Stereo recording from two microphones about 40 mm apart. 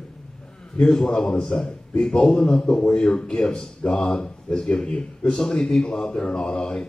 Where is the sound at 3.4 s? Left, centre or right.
Centre.